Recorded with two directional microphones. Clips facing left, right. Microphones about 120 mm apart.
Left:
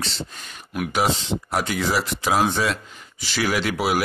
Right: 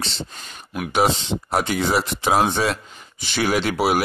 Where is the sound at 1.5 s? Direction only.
25° right (ahead or behind).